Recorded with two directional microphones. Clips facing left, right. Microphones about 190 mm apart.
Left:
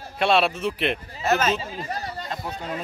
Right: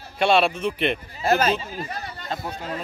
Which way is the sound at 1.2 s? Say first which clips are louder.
Right 2 dB; 35° right (ahead or behind).